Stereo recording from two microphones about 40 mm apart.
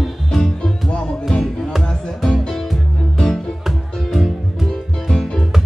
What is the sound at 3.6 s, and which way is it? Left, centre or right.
Music, centre.